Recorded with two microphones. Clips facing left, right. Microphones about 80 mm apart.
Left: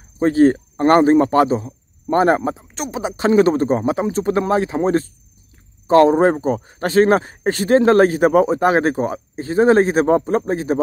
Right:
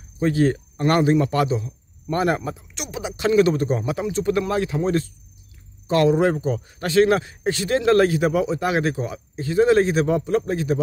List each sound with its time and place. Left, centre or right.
0.2 s a man's voice: left